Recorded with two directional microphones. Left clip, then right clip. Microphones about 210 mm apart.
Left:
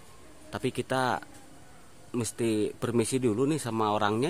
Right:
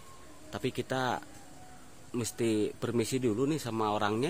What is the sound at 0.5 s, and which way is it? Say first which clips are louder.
A man's voice: left 3 dB; 20° left (ahead or behind).